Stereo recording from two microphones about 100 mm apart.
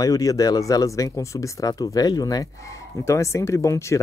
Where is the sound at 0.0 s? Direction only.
35° left (ahead or behind).